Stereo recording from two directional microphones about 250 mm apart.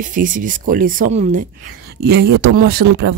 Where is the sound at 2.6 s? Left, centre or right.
Right.